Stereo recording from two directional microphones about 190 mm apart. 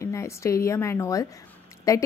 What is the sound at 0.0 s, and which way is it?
Speech, 15° left (ahead or behind).